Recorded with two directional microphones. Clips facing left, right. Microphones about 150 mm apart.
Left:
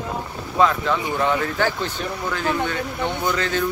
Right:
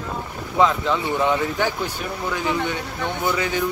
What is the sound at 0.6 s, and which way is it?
Speech, 20° right (ahead or behind).